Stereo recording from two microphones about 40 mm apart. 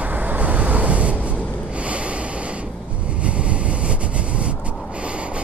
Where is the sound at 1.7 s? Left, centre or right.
Right.